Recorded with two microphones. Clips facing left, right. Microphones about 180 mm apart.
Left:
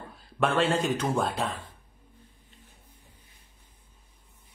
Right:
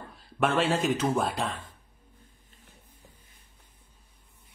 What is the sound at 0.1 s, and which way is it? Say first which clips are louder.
A man's voice: even; centre (ahead or behind).